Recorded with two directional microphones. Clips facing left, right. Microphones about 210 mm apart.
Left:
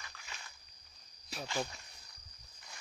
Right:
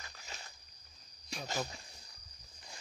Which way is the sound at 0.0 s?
40° right (ahead or behind).